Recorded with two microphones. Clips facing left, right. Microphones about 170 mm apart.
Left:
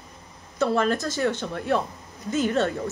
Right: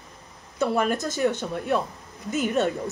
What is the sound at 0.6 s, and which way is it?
Speech, 15° right (ahead or behind).